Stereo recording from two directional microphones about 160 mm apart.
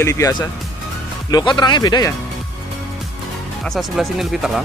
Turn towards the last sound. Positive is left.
turn(degrees=0)  # may be behind; listen again after turning